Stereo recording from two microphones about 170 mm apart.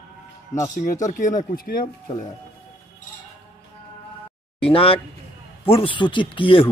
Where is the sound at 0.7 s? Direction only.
50° left (ahead or behind).